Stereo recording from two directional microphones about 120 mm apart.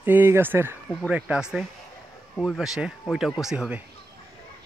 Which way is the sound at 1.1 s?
5° right (ahead or behind).